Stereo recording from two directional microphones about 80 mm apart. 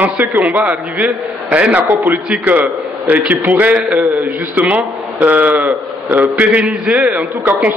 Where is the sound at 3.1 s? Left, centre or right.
Right.